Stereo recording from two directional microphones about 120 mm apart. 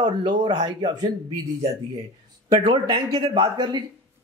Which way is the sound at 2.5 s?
55° right (ahead or behind).